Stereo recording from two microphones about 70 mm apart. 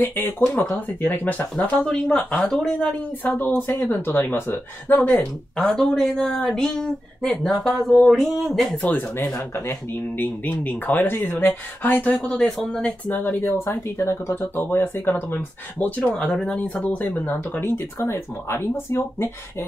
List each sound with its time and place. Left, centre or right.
0.1 s speech: left
2.4 s speech: centre
3.3 s speech: left
5.7 s speech: centre
9.7 s speech: left; by 12.9 s centre
13.1 s speech: left
17.9 s speech: left